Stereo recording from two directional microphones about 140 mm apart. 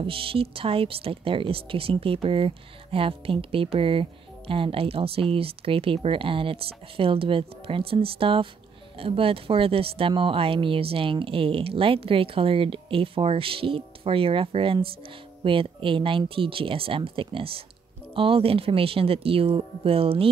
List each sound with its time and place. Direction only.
0.0 s speech: 40° right (ahead or behind)